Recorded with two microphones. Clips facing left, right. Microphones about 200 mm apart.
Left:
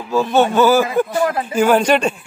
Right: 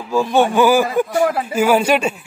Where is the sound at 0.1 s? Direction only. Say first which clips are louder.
Even; 10° right (ahead or behind).